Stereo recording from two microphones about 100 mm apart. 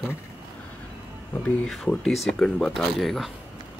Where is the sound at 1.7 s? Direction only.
5° left (ahead or behind).